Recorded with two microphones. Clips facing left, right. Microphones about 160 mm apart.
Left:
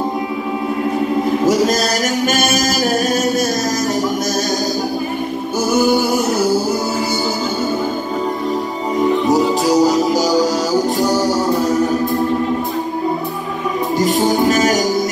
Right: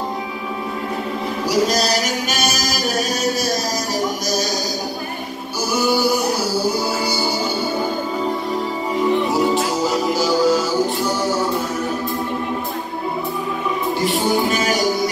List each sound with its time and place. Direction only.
1.5 s chant: 50° left (ahead or behind)
5.7 s music: 50° left (ahead or behind)
9.3 s music: 40° left (ahead or behind)
13.9 s music: 40° left (ahead or behind)